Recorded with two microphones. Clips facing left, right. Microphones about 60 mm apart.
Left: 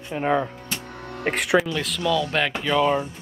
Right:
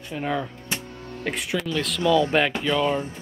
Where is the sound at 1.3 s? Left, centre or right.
Left.